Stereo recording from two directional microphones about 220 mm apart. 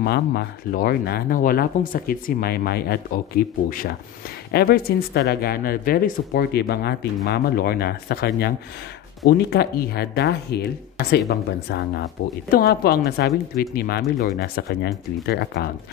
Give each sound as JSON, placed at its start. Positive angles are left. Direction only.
{"t": 0.0, "sound": "speech", "side_deg": 50}